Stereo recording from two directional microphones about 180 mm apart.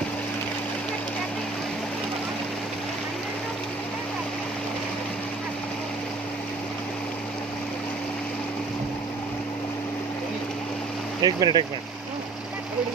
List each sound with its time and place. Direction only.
11.2 s speech: 20° right (ahead or behind)